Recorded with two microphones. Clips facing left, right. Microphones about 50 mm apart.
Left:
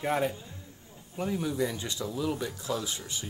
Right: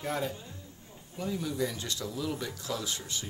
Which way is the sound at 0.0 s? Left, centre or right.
Left.